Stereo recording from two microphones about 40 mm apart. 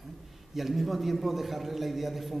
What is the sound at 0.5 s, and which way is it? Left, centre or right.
A man's voice, centre.